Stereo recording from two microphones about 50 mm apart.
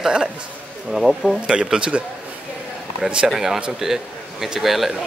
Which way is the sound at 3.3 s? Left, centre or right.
Centre.